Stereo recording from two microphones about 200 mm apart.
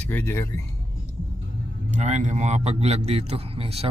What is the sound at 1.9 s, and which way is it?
A man's voice, 35° right (ahead or behind).